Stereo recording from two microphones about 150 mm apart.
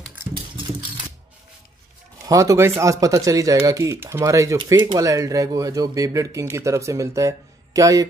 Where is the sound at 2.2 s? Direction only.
20° right (ahead or behind).